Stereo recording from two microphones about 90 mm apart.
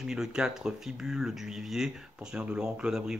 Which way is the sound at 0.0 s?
5° right (ahead or behind).